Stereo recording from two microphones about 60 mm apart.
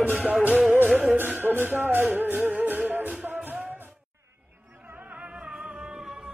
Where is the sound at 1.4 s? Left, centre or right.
Right.